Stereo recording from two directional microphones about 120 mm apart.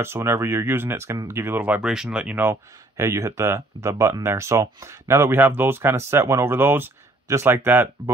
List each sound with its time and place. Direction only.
0.0 s speech: 20° right (ahead or behind)
3.0 s speech: 25° right (ahead or behind)